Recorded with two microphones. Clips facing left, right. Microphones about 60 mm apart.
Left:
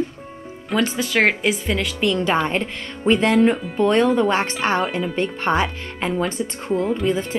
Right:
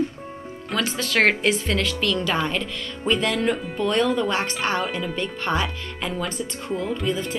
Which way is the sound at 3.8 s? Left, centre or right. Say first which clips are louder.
Left 5 dB; left.